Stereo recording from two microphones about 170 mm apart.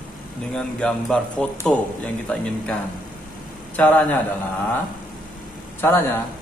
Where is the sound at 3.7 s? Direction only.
10° left (ahead or behind).